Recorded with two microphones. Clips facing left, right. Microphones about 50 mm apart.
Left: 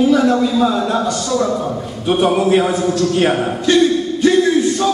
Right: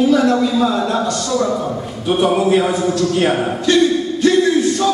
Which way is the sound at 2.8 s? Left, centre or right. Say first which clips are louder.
Left 1 dB; centre.